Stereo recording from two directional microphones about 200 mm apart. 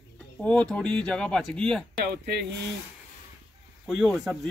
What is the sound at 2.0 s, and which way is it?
Speech, 55° right (ahead or behind).